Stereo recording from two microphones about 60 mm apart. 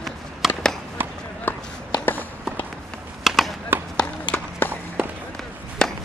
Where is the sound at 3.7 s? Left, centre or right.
Right.